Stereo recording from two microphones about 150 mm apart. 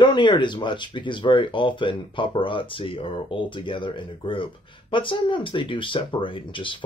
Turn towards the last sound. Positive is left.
turn(degrees=35)  # may be behind; listen again after turning